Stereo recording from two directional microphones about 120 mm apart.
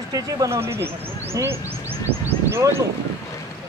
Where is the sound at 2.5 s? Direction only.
20° right (ahead or behind).